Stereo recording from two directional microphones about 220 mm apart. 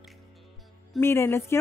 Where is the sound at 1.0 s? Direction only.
10° left (ahead or behind).